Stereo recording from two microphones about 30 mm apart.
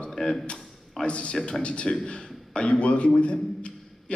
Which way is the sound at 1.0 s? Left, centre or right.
Left.